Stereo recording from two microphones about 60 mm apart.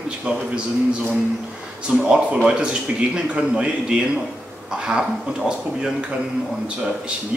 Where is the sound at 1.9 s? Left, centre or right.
Centre.